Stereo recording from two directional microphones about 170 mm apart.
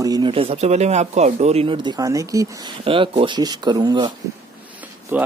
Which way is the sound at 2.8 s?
30° right (ahead or behind).